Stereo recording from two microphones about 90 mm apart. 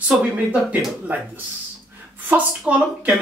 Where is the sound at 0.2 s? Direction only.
15° right (ahead or behind).